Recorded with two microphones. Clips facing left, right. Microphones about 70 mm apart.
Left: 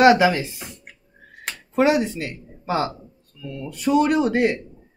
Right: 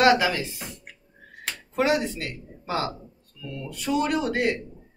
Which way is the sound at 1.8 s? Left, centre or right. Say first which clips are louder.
Left 5 dB; left.